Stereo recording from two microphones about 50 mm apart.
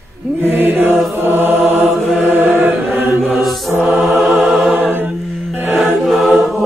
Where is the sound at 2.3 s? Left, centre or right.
Right.